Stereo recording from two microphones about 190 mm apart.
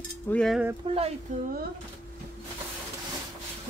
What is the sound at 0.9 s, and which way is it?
Speech, 30° right (ahead or behind).